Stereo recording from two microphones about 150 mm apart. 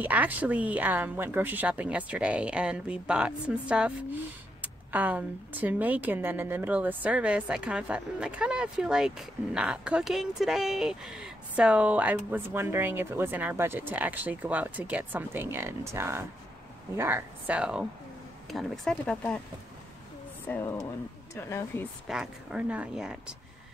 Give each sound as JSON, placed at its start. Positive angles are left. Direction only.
{"t": 0.0, "sound": "a woman's voice", "side_deg": -10}
{"t": 20.4, "sound": "speech", "side_deg": 15}
{"t": 22.0, "sound": "speech", "side_deg": -5}